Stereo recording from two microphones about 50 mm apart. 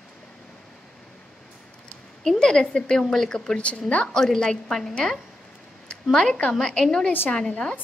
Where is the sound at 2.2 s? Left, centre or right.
Centre.